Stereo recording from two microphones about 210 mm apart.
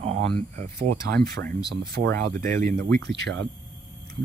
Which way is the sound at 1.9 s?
50° right (ahead or behind).